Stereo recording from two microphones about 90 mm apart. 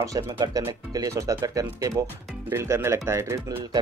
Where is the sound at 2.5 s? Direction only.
25° right (ahead or behind).